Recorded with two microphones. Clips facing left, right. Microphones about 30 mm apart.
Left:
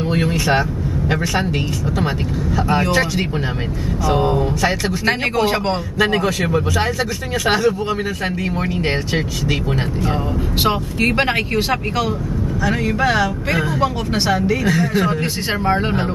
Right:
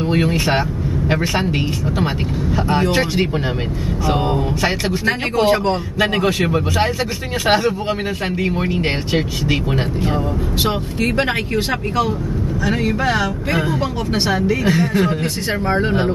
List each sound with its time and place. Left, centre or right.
0.0 s speech: centre
2.9 s speech: right
5.9 s speech: centre
13.6 s speech: centre